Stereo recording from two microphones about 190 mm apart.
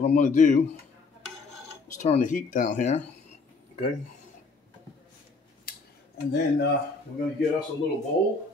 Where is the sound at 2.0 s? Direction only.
40° left (ahead or behind).